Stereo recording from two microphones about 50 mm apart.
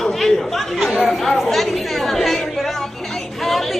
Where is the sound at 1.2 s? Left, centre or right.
Centre.